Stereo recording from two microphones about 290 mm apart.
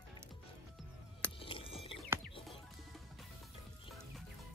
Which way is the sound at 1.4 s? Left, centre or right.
Centre.